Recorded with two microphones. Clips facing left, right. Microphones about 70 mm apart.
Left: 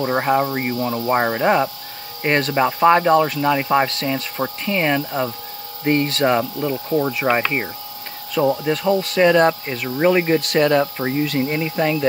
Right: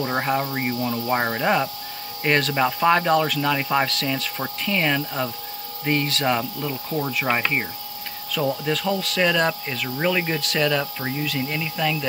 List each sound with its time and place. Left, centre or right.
0.0 s speech: centre
5.9 s speech: left
6.2 s speech: centre
7.2 s speech: centre
8.4 s speech: left